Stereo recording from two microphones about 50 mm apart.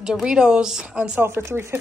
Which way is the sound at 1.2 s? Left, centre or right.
Right.